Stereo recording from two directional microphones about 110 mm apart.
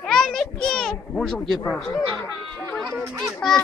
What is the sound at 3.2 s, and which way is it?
Speech, centre (ahead or behind).